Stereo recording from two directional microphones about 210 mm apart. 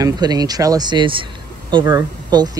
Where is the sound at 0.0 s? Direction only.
20° right (ahead or behind).